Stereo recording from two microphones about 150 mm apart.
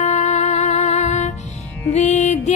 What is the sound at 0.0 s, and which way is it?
Music, 50° left (ahead or behind).